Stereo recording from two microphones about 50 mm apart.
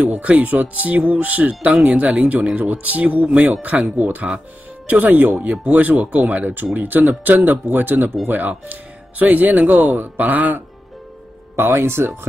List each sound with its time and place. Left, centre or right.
0.0 s speech: right
11.5 s speech: right